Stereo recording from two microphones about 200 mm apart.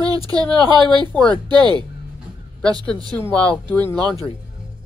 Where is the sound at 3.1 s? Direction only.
5° left (ahead or behind).